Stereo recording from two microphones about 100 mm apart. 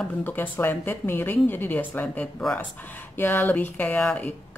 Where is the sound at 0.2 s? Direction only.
20° left (ahead or behind).